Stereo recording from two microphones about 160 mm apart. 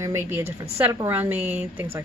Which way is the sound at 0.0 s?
15° right (ahead or behind).